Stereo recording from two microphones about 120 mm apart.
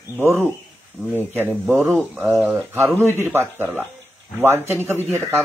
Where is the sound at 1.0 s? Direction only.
15° right (ahead or behind).